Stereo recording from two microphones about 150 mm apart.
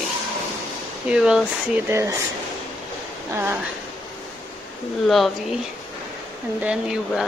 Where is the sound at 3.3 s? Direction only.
15° right (ahead or behind).